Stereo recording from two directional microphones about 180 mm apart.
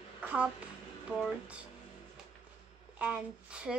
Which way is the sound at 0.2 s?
5° right (ahead or behind).